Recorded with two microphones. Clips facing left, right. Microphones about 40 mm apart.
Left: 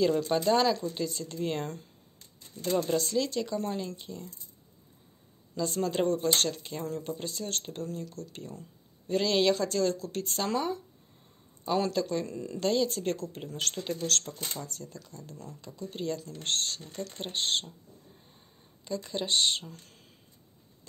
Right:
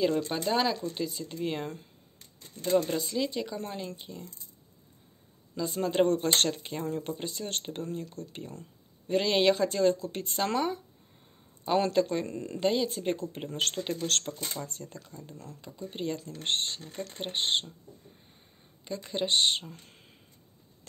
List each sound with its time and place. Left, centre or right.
0.0 s speech: centre
5.5 s speech: centre
6.0 s speech: right
6.5 s speech: right
12.6 s speech: centre
18.9 s speech: right